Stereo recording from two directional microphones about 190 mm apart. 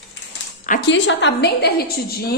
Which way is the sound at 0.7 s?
60° left (ahead or behind).